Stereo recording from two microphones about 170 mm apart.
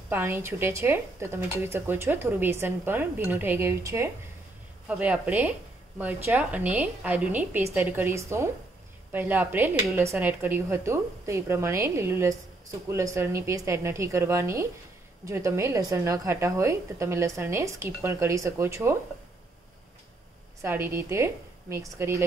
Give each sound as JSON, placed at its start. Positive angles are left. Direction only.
{"t": 0.1, "sound": "a woman's voice", "side_deg": -15}
{"t": 20.6, "sound": "a woman's voice", "side_deg": -15}